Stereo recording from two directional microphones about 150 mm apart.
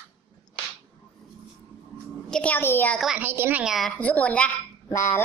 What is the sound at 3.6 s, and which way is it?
Speech, centre (ahead or behind).